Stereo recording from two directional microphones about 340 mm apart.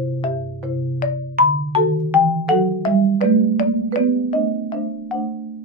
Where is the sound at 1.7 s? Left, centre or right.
Centre.